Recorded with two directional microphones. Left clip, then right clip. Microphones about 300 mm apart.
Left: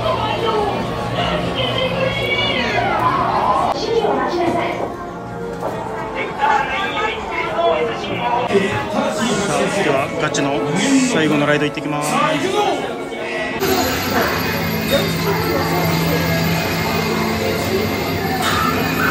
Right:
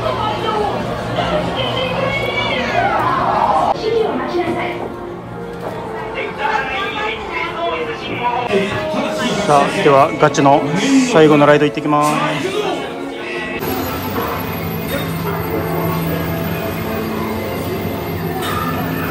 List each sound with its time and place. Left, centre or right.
2.3 s cat: centre
9.2 s speech: centre